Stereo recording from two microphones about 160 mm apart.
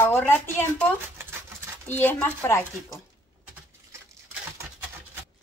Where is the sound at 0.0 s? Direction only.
15° left (ahead or behind).